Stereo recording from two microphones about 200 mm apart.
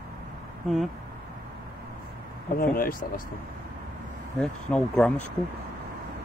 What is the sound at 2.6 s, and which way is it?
Speech, 45° left (ahead or behind).